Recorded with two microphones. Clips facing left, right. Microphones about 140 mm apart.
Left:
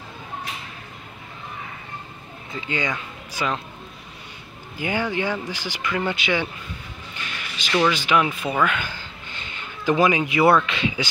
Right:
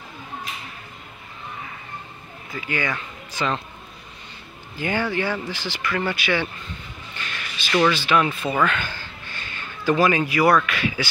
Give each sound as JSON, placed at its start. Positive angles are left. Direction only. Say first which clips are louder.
{"t": 2.5, "sound": "speech", "louder": "even", "side_deg": 20}
{"t": 4.7, "sound": "speech", "louder": "right 1 dB", "side_deg": 15}
{"t": 7.3, "sound": "a sound", "louder": "even", "side_deg": 15}
{"t": 7.9, "sound": "speech", "louder": "even", "side_deg": 15}